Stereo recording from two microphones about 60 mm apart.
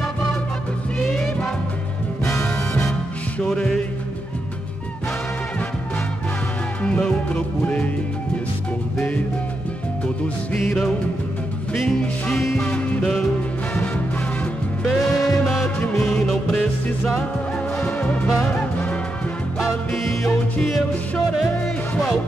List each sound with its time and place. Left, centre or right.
2.4 s music: centre
6.8 s music: centre
11.7 s music: centre
14.9 s music: centre
17.7 s music: left
19.9 s music: centre